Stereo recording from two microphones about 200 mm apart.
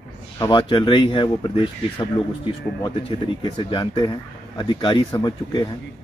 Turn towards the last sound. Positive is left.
turn(degrees=20)  # may be behind; listen again after turning